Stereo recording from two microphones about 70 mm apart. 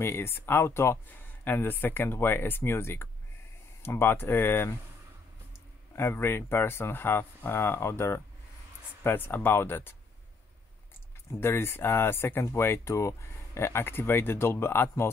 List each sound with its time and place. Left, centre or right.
0.0 s speech: left
1.0 s speech: left
5.9 s speech: left
11.2 s speech: left